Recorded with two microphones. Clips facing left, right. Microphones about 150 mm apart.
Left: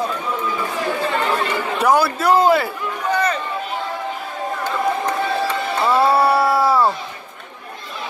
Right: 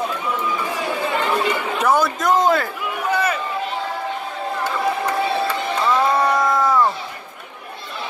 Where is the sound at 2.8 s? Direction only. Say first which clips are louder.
Left 1 dB; 10° right (ahead or behind).